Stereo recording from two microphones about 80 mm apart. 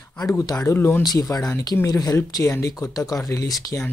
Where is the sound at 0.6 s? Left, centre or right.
Left.